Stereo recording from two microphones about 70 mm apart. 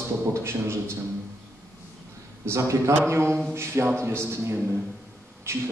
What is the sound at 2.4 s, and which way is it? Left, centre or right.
A man's voice, right.